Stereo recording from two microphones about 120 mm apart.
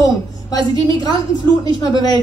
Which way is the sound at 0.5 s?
35° left (ahead or behind).